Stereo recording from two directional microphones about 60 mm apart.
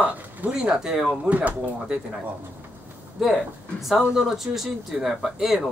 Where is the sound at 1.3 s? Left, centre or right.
Right.